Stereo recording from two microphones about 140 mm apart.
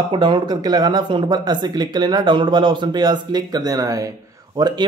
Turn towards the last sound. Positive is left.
turn(degrees=-30)  # may be behind; listen again after turning